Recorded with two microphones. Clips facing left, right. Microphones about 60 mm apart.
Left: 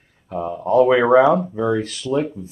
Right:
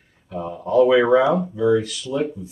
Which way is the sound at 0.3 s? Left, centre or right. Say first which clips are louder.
Left 3 dB; left.